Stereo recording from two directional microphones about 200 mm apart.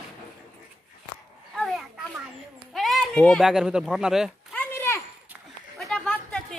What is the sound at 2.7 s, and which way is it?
Speech, centre (ahead or behind).